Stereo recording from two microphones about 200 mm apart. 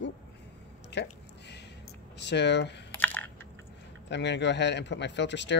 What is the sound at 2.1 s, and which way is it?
Speech, 60° left (ahead or behind).